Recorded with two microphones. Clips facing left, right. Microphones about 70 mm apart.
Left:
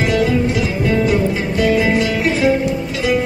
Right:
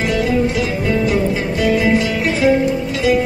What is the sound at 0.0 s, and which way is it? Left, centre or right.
Music, centre.